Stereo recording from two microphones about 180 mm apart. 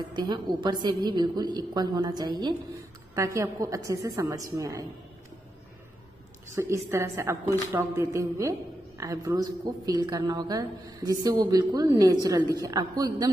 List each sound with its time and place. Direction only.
0.1 s a woman's voice: 25° right (ahead or behind)
6.5 s a woman's voice: 15° right (ahead or behind)